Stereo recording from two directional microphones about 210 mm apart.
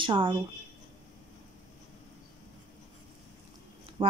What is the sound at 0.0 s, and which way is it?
Speech, 25° right (ahead or behind).